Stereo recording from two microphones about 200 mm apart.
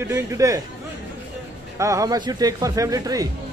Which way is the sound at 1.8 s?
15° right (ahead or behind).